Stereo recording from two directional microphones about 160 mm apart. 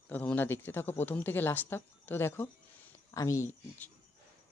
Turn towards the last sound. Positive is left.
turn(degrees=15)  # may be behind; listen again after turning